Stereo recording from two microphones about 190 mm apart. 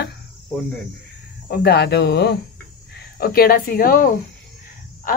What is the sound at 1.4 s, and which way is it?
Speech, 60° left (ahead or behind).